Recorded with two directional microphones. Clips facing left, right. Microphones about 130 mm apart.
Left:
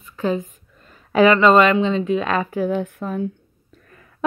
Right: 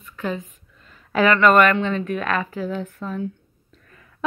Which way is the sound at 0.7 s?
40° left (ahead or behind).